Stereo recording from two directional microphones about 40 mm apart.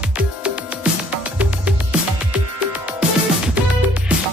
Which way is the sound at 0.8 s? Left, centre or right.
Right.